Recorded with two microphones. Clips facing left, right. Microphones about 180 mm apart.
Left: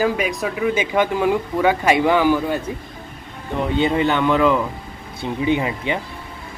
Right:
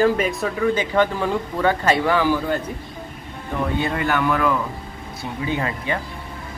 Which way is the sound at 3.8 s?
20° left (ahead or behind).